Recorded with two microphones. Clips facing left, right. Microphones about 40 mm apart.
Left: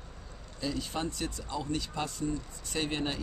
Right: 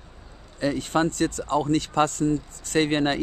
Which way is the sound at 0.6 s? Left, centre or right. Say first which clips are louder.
Right 11 dB; right.